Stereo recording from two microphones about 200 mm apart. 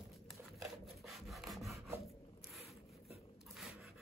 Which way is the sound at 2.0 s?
Centre (ahead or behind).